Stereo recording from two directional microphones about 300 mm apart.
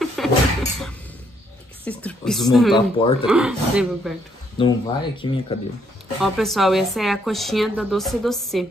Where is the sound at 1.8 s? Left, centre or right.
Centre.